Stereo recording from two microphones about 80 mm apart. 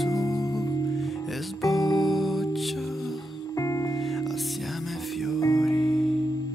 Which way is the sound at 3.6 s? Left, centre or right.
Left.